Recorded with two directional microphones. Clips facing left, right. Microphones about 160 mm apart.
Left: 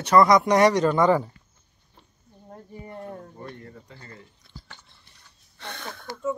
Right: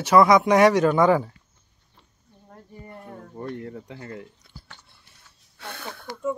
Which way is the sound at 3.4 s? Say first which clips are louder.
Right 7 dB; 60° right (ahead or behind).